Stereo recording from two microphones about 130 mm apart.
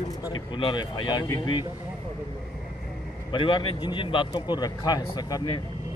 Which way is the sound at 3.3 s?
40° left (ahead or behind).